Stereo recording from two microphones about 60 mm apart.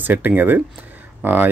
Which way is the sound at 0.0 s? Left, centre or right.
Right.